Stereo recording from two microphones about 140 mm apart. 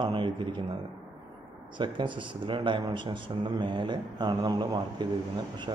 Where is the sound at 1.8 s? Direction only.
35° right (ahead or behind).